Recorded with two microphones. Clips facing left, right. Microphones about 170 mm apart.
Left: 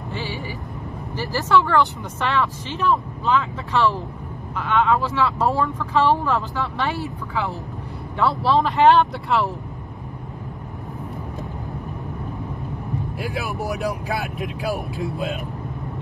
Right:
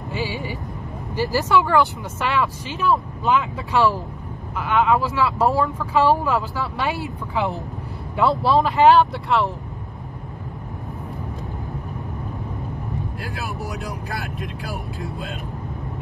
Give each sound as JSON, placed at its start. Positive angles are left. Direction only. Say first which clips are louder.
{"t": 0.1, "sound": "speech", "louder": "right 3 dB", "side_deg": -15}
{"t": 4.6, "sound": "speech", "louder": "right 1 dB", "side_deg": -5}
{"t": 8.6, "sound": "speech", "louder": "right 1 dB", "side_deg": 0}